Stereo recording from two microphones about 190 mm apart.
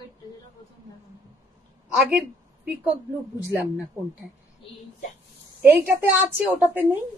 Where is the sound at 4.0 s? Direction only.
10° right (ahead or behind).